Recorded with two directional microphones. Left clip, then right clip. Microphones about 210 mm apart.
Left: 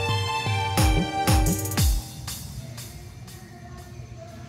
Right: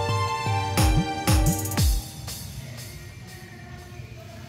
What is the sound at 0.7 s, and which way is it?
Music, centre (ahead or behind).